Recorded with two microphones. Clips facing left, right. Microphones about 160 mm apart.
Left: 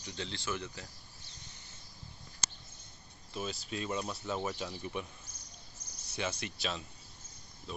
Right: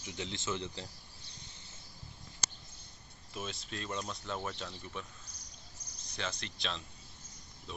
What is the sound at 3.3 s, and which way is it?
Speech, centre (ahead or behind).